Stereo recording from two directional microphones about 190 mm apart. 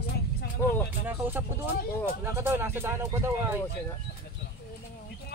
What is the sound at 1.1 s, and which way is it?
Speech, 10° right (ahead or behind).